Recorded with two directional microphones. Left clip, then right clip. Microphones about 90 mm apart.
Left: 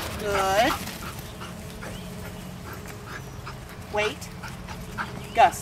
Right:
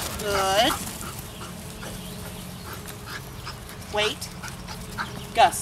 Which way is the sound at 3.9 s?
15° right (ahead or behind).